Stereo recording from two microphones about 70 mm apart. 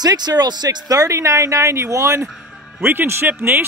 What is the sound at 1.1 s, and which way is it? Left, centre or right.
Speech, right.